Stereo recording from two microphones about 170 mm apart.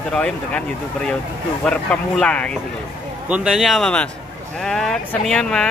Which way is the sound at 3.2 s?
5° right (ahead or behind).